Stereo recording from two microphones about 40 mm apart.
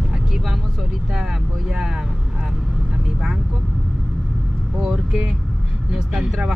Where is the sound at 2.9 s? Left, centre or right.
Centre.